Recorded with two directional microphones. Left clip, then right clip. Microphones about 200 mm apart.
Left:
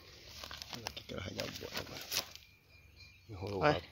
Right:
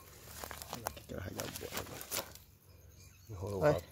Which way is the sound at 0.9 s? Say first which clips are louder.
Left 2 dB; 30° left (ahead or behind).